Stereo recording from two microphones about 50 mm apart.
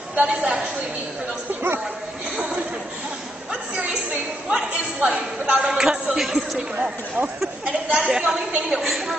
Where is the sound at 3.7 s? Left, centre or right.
Right; by 6.6 s centre.